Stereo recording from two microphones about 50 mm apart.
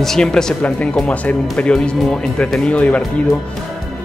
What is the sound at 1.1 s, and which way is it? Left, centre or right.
Speech, left.